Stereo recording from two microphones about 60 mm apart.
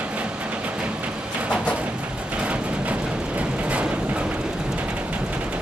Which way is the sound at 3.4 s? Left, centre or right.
Right.